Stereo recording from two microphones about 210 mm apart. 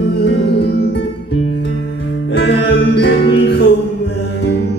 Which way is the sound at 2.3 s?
50° left (ahead or behind).